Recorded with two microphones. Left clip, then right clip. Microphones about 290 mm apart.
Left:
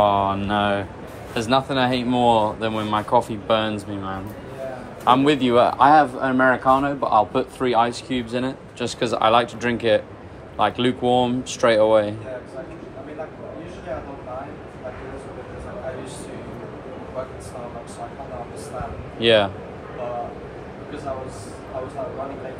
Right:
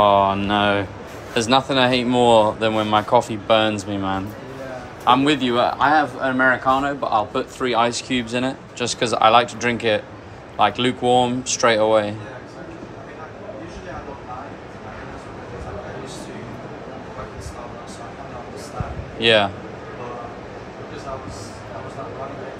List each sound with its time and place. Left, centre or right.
0.0 s speech: centre
5.0 s speech: centre
19.1 s a man's voice: centre